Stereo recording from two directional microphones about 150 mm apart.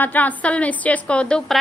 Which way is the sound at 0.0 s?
10° left (ahead or behind).